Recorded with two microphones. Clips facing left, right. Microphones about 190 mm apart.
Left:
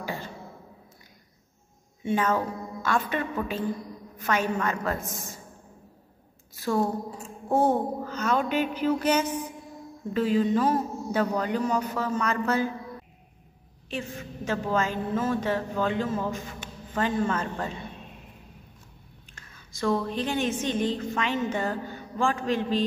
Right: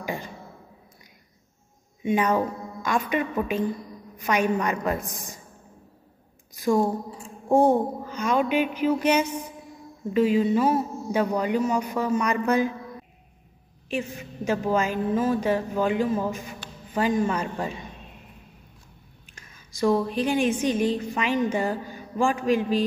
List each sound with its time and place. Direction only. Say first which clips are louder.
0.0 s music: right 2 dB; 15° right (ahead or behind)
2.0 s a woman's voice: right 3 dB; 15° right (ahead or behind)
6.5 s a woman's voice: right 4 dB; 15° right (ahead or behind)
13.8 s a woman's voice: right 4 dB; 15° right (ahead or behind)
19.4 s a woman's voice: right 5 dB; 15° right (ahead or behind)